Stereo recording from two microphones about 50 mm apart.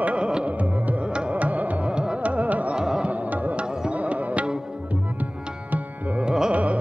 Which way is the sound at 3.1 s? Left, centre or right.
Right.